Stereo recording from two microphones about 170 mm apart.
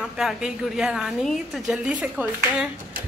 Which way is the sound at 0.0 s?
5° right (ahead or behind).